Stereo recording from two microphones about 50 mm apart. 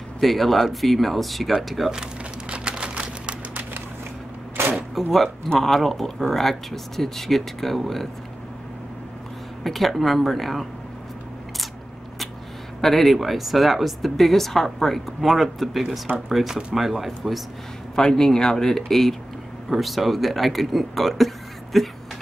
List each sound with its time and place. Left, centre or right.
0.2 s speech: centre
2.5 s typing: right
4.9 s speech: centre
9.6 s speech: centre
12.8 s speech: centre
17.9 s speech: centre